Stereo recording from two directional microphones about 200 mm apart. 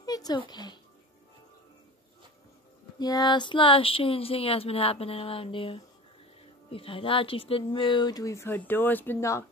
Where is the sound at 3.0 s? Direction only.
20° left (ahead or behind).